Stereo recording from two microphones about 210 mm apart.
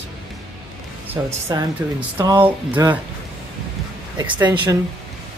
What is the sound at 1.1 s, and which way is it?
Speech, 15° right (ahead or behind).